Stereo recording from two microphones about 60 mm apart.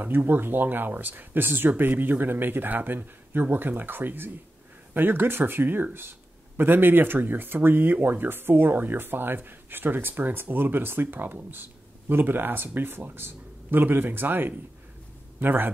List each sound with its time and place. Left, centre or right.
0.0 s speech: right